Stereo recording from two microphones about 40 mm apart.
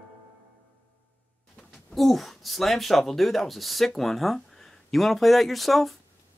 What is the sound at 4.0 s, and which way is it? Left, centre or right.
Speech, centre.